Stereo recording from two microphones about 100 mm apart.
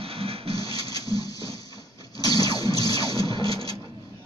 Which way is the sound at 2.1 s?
40° left (ahead or behind).